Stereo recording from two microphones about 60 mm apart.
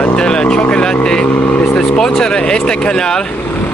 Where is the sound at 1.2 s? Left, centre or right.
Left.